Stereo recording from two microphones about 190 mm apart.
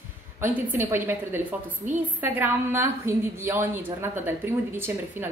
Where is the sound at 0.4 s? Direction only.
10° right (ahead or behind).